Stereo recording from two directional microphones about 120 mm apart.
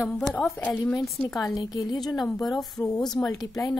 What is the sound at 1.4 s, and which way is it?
Speech, 30° left (ahead or behind).